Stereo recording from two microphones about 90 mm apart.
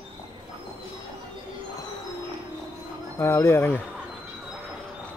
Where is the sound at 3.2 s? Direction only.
30° left (ahead or behind).